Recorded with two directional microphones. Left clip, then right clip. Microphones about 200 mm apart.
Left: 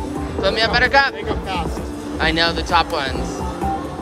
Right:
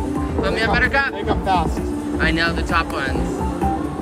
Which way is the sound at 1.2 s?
20° right (ahead or behind).